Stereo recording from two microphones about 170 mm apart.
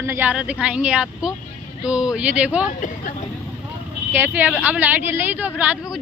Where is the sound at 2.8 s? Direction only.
50° left (ahead or behind).